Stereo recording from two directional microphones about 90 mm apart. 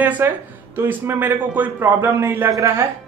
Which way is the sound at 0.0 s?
20° right (ahead or behind).